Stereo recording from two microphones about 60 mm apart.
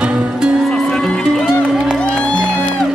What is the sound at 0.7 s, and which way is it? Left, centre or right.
Music, centre.